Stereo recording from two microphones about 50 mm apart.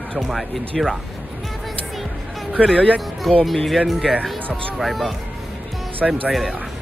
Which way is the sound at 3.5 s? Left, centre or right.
Centre.